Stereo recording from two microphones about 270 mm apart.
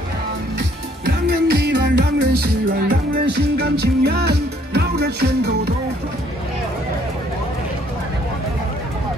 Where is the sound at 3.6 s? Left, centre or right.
Right.